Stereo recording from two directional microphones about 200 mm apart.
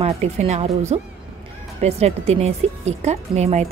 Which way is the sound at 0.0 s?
35° right (ahead or behind).